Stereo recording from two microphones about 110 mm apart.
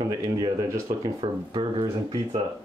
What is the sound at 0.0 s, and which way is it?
Speech, 35° right (ahead or behind).